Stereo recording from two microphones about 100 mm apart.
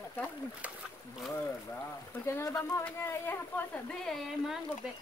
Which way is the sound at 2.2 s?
25° left (ahead or behind).